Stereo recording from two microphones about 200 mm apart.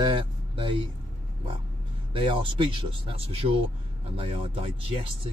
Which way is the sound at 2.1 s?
25° right (ahead or behind).